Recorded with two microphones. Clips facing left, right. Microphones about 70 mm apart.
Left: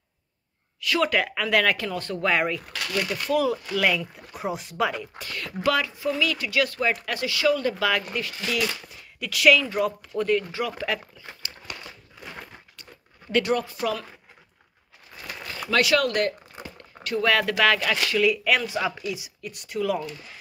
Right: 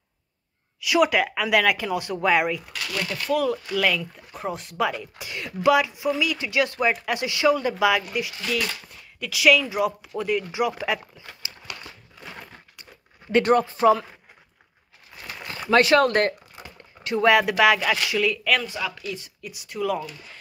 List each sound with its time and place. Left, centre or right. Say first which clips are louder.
0.7 s speech: right 3 dB; centre
5.2 s speech: right 4 dB; centre
8.4 s speech: even; centre
13.4 s speech: right 6 dB; right
15.2 s crumpling: right 1 dB; right
15.7 s speech: right 4 dB; right
17.0 s speech: right 4 dB; right; by 18.3 s centre
18.3 s speech: even; centre
18.7 s speech: left 3 dB; left
19.0 s speech: left 2 dB; centre
19.4 s speech: left 1 dB; centre